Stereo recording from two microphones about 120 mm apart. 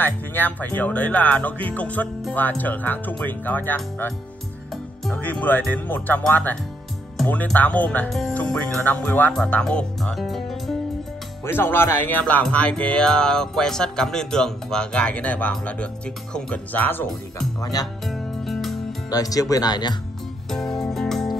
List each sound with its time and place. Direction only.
0.0 s speech: 15° left (ahead or behind)
5.1 s speech: 15° left (ahead or behind)
11.4 s speech: 20° left (ahead or behind)
17.6 s speech: 30° left (ahead or behind)
18.0 s music: centre (ahead or behind)
19.0 s speech: 30° left (ahead or behind)
20.4 s music: 5° left (ahead or behind)